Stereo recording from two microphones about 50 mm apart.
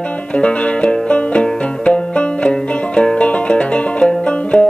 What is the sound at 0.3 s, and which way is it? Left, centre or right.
Music, left.